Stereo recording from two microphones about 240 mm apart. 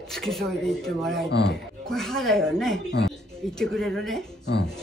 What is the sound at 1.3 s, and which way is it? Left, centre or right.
Speech, left.